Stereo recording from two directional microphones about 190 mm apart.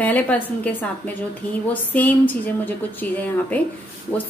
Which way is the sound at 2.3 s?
10° left (ahead or behind).